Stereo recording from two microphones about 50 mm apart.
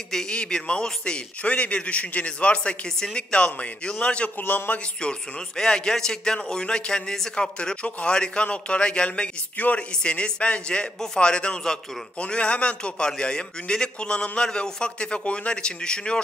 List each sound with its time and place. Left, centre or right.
0.1 s a man's voice: centre
4.4 s a man's voice: left
5.6 s a man's voice: centre